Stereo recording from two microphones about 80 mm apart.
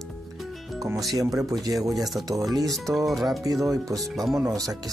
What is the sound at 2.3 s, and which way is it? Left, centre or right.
Speech, right.